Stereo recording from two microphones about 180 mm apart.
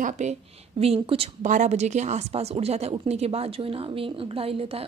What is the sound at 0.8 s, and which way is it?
A woman's voice, 35° right (ahead or behind).